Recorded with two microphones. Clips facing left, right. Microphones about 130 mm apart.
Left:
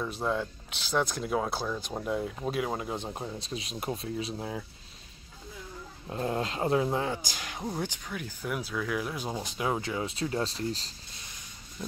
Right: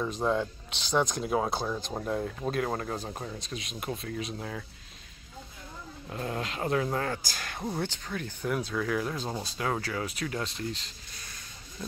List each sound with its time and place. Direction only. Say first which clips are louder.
0.3 s speech: right 2 dB; centre (ahead or behind)
3.2 s speech: left 1 dB; 25° left (ahead or behind)
6.0 s speech: left 3 dB; 25° left (ahead or behind)